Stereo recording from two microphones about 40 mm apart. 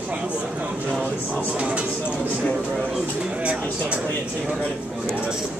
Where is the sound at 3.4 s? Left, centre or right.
Right.